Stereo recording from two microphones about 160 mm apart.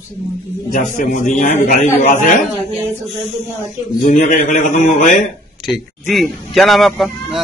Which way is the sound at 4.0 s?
50° left (ahead or behind).